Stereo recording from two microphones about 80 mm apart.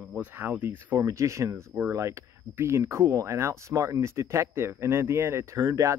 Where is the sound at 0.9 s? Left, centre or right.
Right.